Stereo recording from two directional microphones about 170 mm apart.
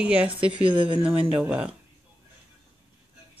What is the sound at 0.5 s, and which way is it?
Speech, 30° right (ahead or behind).